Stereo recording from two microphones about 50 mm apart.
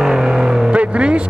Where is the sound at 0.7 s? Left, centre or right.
Right.